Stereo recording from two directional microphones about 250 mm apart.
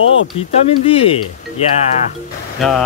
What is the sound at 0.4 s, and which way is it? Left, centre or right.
Speech, left.